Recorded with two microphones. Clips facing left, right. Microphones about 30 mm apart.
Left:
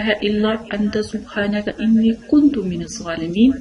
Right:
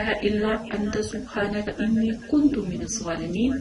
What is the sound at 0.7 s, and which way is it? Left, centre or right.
Speech, left.